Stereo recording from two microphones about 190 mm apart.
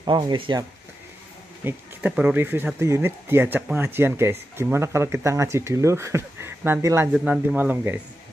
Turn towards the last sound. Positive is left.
turn(degrees=-10)  # may be behind; listen again after turning